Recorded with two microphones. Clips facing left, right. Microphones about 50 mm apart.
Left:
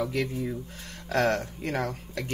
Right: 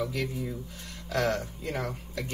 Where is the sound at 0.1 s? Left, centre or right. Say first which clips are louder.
Left 3 dB; left.